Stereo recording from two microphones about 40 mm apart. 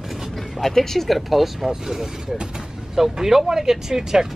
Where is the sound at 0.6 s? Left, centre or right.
Centre.